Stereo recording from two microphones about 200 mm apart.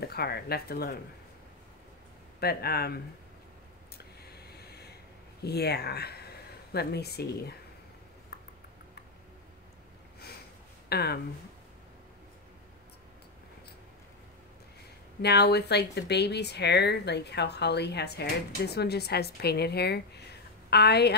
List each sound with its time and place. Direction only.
0.1 s speech: 50° left (ahead or behind)
2.4 s speech: 50° left (ahead or behind)
4.0 s snort: 55° left (ahead or behind)
5.4 s speech: 55° left (ahead or behind)
10.9 s speech: 55° left (ahead or behind)
15.2 s speech: 55° left (ahead or behind)